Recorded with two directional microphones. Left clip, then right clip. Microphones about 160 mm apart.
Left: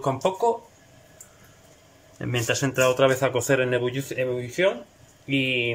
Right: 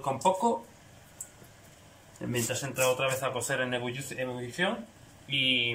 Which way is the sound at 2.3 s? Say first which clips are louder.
Left 8 dB; 75° left (ahead or behind).